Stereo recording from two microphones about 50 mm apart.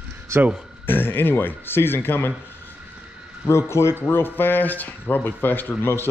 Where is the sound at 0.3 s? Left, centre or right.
Right.